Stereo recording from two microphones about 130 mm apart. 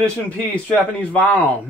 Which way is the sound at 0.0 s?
10° left (ahead or behind).